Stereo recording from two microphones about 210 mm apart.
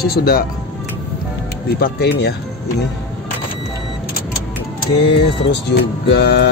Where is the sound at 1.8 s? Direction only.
50° left (ahead or behind).